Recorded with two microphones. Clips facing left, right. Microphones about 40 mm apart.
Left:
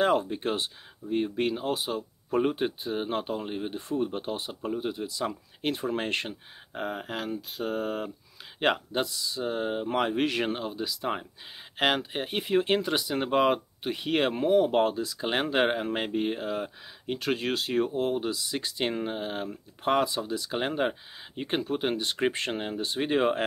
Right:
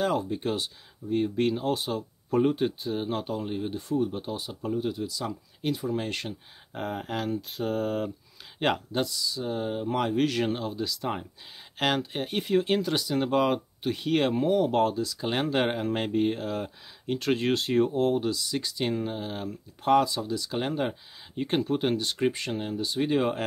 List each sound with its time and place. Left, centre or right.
0.0 s speech: left
1.1 s speech: centre
3.9 s speech: left
4.5 s speech: centre
6.7 s speech: centre
8.9 s speech: left; by 18.2 s centre
18.2 s speech: left
22.2 s speech: left